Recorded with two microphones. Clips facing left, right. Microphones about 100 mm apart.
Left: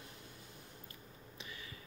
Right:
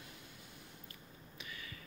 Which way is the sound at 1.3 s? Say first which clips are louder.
Right 1 dB; 30° left (ahead or behind).